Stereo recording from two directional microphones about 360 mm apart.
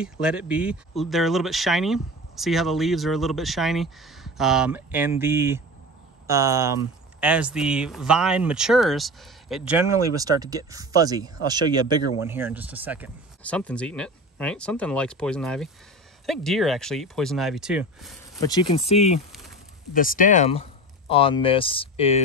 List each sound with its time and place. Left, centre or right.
0.0 s speech: centre
18.5 s speech: centre